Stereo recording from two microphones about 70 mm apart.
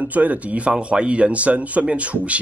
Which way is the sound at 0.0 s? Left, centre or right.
Right.